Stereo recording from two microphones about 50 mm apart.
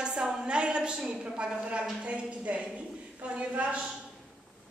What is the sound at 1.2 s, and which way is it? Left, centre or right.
A man's voice, right.